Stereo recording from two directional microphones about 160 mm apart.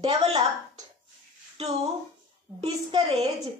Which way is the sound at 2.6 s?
35° right (ahead or behind).